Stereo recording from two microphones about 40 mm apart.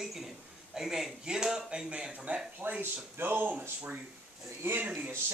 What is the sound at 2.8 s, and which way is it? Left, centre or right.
Speech, right.